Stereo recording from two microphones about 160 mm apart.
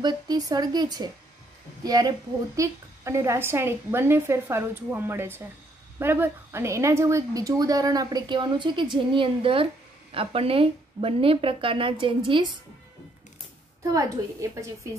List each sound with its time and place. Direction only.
0.0 s a woman's voice: 25° right (ahead or behind)
13.8 s a woman's voice: 20° right (ahead or behind)